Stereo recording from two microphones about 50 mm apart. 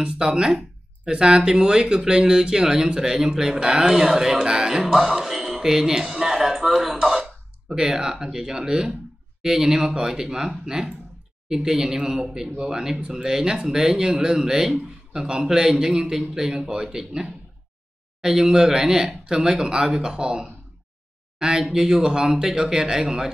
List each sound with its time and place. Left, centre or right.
0.0 s speech: centre
7.0 s throat clearing: centre
7.2 s speech: centre